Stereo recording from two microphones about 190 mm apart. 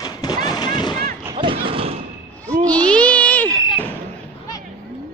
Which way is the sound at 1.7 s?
30° right (ahead or behind).